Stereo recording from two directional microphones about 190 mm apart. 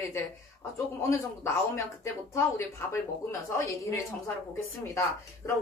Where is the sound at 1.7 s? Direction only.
15° left (ahead or behind).